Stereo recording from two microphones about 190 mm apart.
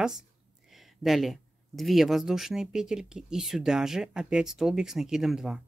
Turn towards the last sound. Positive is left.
turn(degrees=-5)  # may be behind; listen again after turning